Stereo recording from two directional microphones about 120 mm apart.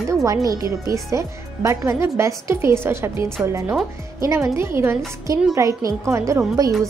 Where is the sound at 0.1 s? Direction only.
25° right (ahead or behind).